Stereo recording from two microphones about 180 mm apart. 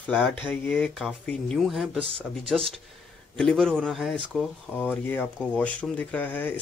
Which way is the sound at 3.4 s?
5° left (ahead or behind).